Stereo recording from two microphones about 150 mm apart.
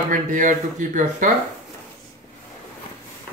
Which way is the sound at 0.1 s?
60° right (ahead or behind).